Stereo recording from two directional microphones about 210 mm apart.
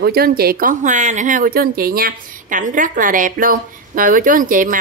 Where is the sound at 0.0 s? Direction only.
45° right (ahead or behind).